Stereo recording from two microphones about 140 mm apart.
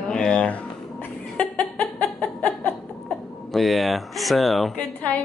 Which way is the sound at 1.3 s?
10° left (ahead or behind).